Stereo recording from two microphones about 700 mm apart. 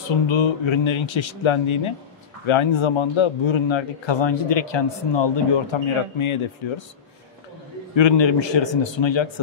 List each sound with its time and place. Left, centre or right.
0.3 s speech: left
7.9 s speech: left